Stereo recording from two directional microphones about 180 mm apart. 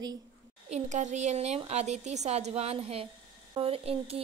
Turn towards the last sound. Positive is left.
turn(degrees=-35)  # may be behind; listen again after turning